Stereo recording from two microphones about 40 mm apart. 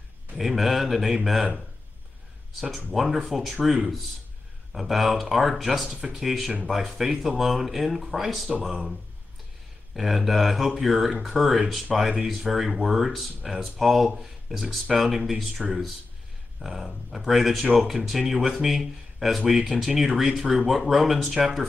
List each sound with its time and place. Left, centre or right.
0.4 s speech: centre
2.9 s speech: centre
9.9 s speech: centre
16.6 s speech: centre